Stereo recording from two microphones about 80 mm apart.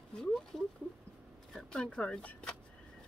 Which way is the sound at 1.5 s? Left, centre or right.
Centre.